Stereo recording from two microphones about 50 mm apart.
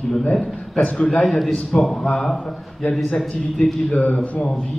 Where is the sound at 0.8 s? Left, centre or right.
Left.